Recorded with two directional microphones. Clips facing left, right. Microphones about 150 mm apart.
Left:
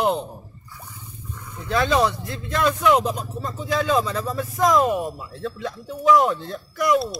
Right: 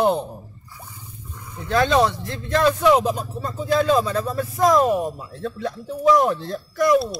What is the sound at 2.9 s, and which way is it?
Speech, centre (ahead or behind).